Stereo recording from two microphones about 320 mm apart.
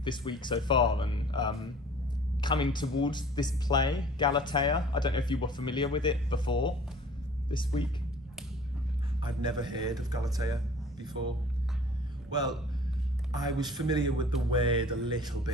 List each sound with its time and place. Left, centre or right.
0.0 s speech: centre
9.2 s speech: centre
13.3 s speech: centre